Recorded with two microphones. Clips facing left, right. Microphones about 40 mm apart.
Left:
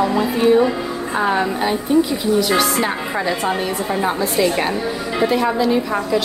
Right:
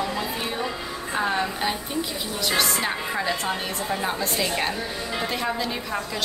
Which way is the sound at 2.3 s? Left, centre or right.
Centre.